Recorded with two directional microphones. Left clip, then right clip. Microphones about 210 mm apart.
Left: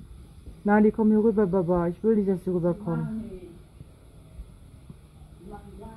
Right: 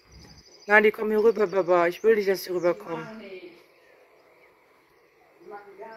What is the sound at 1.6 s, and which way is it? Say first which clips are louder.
Snicker: right 4 dB; 20° right (ahead or behind).